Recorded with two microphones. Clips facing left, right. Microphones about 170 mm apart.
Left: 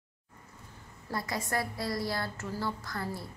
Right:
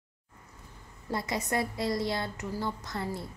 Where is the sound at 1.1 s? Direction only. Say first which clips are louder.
Right 2 dB; 20° right (ahead or behind).